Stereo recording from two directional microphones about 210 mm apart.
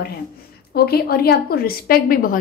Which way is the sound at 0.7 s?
45° left (ahead or behind).